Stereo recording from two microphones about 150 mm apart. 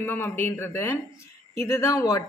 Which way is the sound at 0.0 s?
15° left (ahead or behind).